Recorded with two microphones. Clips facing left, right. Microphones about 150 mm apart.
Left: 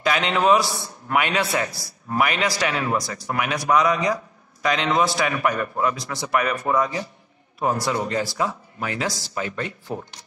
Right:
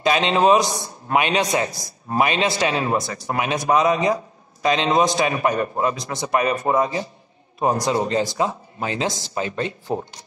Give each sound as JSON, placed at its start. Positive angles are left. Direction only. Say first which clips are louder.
{"t": 0.0, "sound": "a man's voice", "louder": "right 3 dB", "side_deg": -25}